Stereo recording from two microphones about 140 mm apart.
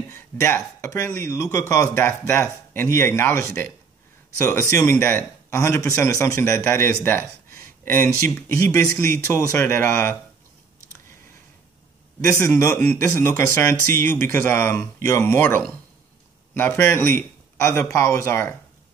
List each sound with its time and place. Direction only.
0.1 s speech: 20° left (ahead or behind)
12.2 s a man's voice: 20° left (ahead or behind)